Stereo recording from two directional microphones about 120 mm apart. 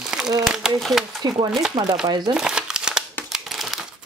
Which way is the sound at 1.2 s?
35° right (ahead or behind).